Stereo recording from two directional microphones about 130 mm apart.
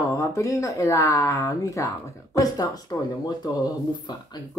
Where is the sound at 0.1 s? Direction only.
25° left (ahead or behind).